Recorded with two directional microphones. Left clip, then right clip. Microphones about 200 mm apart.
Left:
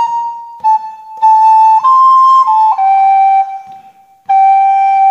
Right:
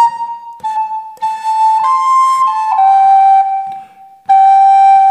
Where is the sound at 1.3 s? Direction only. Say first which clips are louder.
Left 7 dB; 50° right (ahead or behind).